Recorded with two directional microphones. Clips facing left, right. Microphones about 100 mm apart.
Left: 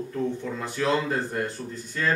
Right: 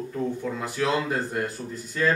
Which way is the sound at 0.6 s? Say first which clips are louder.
Left 1 dB; 10° right (ahead or behind).